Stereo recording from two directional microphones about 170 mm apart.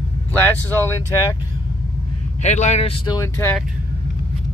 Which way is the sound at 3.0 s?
20° left (ahead or behind).